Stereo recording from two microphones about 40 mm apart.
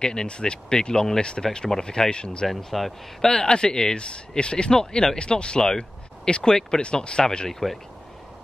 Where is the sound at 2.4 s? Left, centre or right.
Centre.